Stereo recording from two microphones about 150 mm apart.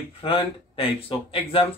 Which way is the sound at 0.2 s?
35° left (ahead or behind).